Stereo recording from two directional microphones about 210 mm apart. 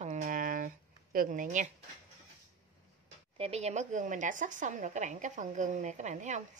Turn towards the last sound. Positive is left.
turn(degrees=-35)  # may be behind; listen again after turning